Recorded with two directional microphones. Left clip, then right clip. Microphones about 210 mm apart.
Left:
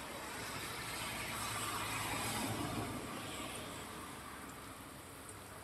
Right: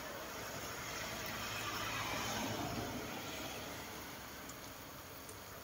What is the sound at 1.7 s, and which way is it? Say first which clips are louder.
Vehicle: even; 55° left (ahead or behind).